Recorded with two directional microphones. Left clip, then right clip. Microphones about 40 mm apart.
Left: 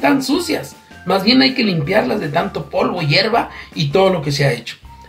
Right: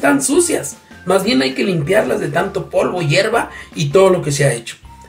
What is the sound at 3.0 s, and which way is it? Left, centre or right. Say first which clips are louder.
Speech: even; right.